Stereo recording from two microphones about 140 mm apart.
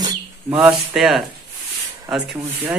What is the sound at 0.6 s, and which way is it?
Speech, 5° right (ahead or behind).